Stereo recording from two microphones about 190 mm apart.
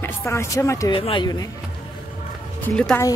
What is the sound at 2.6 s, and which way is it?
Speech, 5° left (ahead or behind).